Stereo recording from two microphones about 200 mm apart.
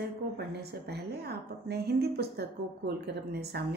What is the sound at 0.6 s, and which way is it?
A woman's voice, 55° right (ahead or behind).